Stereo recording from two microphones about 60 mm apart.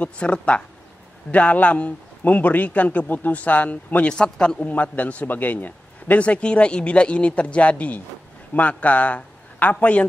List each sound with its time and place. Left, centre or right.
0.0 s a man's voice: centre
4.6 s a man's voice: left